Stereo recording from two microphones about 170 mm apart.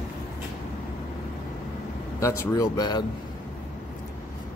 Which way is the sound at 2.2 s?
15° left (ahead or behind).